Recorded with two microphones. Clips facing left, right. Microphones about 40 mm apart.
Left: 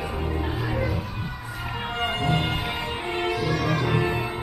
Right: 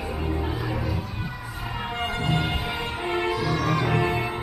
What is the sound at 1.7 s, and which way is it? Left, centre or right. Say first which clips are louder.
Music: even; centre.